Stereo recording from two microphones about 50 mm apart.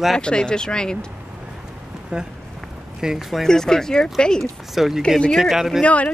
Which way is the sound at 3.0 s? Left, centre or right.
Centre.